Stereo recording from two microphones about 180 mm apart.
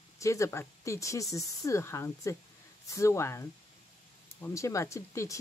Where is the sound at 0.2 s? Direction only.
15° left (ahead or behind).